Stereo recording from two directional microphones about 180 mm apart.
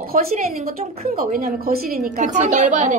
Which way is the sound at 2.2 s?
45° right (ahead or behind).